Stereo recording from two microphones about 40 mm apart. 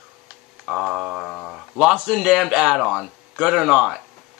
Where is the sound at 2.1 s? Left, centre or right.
Centre.